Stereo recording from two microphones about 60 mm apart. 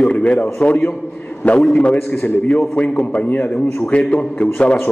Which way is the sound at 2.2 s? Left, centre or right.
Left.